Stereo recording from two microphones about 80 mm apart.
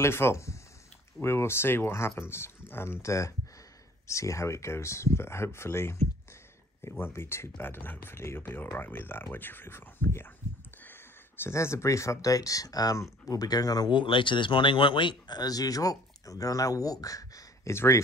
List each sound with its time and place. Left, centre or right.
0.0 s speech: left
13.9 s speech: left
17.7 s speech: left